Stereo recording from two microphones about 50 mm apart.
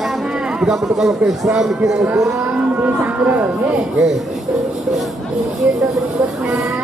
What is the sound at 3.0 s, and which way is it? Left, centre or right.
Speech, right.